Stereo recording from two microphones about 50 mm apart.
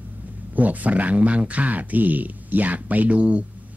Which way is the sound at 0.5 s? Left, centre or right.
Right.